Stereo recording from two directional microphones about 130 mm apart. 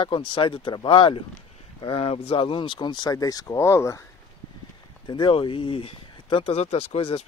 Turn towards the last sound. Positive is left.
turn(degrees=50)  # may be behind; listen again after turning